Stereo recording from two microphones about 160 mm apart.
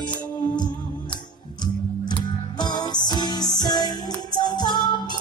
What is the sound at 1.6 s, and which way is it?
Music, 25° left (ahead or behind).